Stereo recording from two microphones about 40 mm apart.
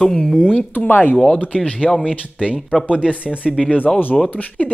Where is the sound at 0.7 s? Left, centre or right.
Left.